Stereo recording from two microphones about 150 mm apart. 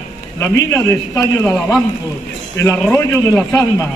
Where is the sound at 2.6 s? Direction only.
20° left (ahead or behind).